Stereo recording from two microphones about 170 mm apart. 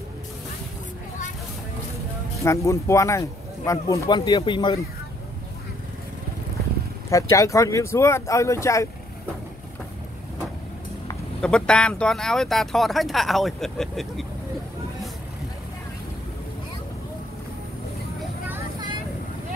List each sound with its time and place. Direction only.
2.4 s speech: 15° left (ahead or behind)
7.1 s speech: 20° left (ahead or behind)
11.4 s speech: 5° left (ahead or behind)